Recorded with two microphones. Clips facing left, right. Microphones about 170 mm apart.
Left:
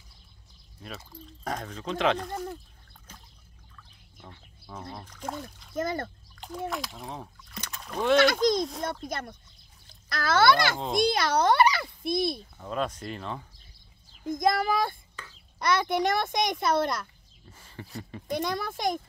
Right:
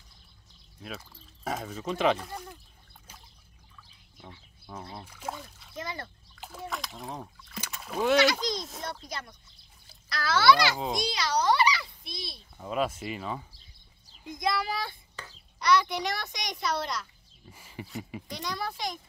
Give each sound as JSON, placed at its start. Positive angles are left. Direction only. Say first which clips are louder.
{"t": 0.8, "sound": "speech", "louder": "even", "side_deg": -5}
{"t": 4.9, "sound": "speech", "louder": "left 2 dB", "side_deg": -5}
{"t": 5.8, "sound": "a child's voice", "louder": "left 8 dB", "side_deg": 50}
{"t": 6.3, "sound": "splash", "louder": "left 5 dB", "side_deg": -5}
{"t": 6.7, "sound": "speech", "louder": "left 2 dB", "side_deg": 0}
{"t": 8.2, "sound": "a child's voice", "louder": "left 4 dB", "side_deg": 50}
{"t": 12.5, "sound": "speech", "louder": "right 1 dB", "side_deg": -5}
{"t": 14.2, "sound": "a child's voice", "louder": "left 5 dB", "side_deg": 45}
{"t": 17.5, "sound": "speech", "louder": "right 2 dB", "side_deg": -10}
{"t": 18.3, "sound": "a child's voice", "louder": "left 6 dB", "side_deg": 50}